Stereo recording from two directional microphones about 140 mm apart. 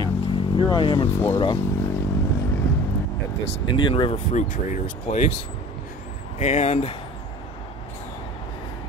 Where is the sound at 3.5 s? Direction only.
35° left (ahead or behind).